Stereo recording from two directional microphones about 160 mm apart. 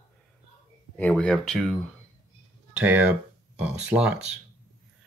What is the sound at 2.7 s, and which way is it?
Speech, 10° right (ahead or behind).